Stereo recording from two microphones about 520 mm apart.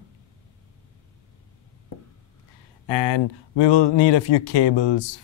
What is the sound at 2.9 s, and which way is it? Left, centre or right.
Speech, left.